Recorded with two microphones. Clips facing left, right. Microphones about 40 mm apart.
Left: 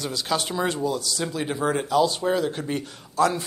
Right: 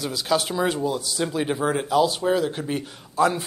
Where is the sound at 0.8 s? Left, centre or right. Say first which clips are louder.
Right 1 dB; centre.